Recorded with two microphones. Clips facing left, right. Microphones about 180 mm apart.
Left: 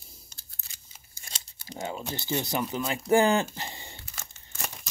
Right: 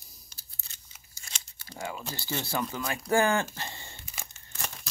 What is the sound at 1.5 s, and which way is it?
Speech, 15° left (ahead or behind).